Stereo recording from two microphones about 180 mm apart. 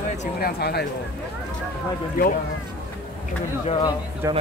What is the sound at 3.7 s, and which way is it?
Speech, 25° left (ahead or behind).